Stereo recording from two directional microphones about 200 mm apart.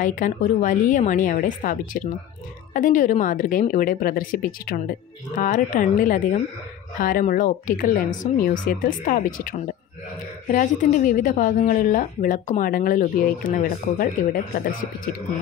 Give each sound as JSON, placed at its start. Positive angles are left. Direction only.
{"t": 0.0, "sound": "a woman's voice", "side_deg": 40}